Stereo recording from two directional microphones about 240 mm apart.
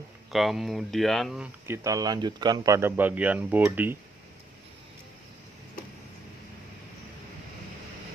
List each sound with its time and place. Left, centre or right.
0.3 s speech: centre